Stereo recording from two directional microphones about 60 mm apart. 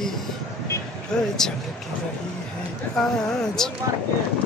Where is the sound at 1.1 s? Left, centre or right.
Centre.